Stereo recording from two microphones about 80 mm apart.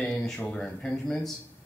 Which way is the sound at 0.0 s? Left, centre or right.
Centre.